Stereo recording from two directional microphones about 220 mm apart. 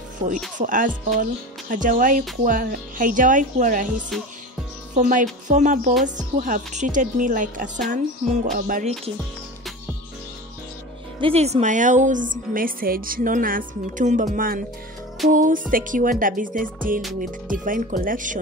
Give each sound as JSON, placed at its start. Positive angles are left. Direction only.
{"t": 0.6, "sound": "a woman's voice", "side_deg": -35}
{"t": 4.1, "sound": "music", "side_deg": 0}
{"t": 4.9, "sound": "a woman's voice", "side_deg": -35}
{"t": 11.1, "sound": "a woman's voice", "side_deg": -25}